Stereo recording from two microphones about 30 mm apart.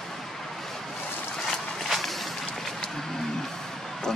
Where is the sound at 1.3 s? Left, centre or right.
Centre.